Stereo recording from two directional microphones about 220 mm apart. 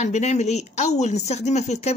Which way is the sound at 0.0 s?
30° left (ahead or behind).